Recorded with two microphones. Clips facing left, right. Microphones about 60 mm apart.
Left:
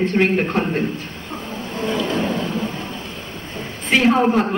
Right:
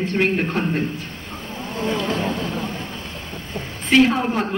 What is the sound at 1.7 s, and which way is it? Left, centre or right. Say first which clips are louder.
Insect: left 1 dB; centre.